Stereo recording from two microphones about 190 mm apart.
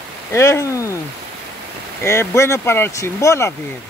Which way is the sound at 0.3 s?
15° left (ahead or behind).